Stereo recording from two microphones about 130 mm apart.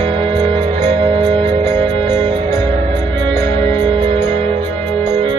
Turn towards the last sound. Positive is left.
turn(degrees=-40)  # may be behind; listen again after turning